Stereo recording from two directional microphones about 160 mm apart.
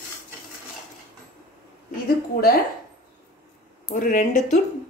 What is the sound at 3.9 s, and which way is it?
Speech, 55° left (ahead or behind).